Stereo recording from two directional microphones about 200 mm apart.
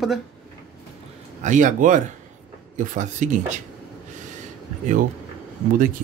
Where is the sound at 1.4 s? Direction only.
40° right (ahead or behind).